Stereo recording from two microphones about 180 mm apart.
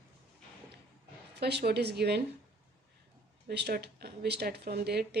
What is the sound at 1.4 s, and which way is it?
Speech, 65° right (ahead or behind).